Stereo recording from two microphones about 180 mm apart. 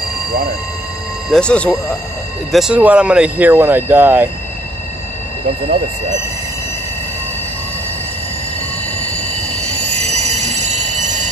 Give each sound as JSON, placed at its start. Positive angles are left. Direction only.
{"t": 0.3, "sound": "speech", "side_deg": -55}
{"t": 1.3, "sound": "speech", "side_deg": 5}
{"t": 2.5, "sound": "speech", "side_deg": -5}
{"t": 9.6, "sound": "train", "side_deg": -35}